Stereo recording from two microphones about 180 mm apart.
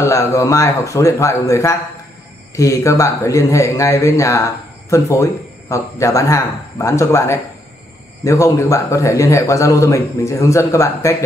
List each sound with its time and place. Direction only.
0.0 s speech: 15° left (ahead or behind)